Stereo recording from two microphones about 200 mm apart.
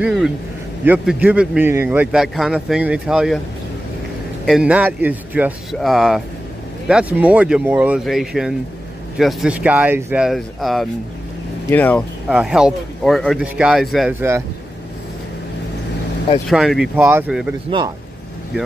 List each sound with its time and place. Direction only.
0.0 s a sound: 5° right (ahead or behind)
0.8 s speech: 5° right (ahead or behind)
4.5 s speech: 5° right (ahead or behind)
12.3 s speech: 5° right (ahead or behind)
16.4 s speech: centre (ahead or behind)
17.6 s speech: 25° right (ahead or behind)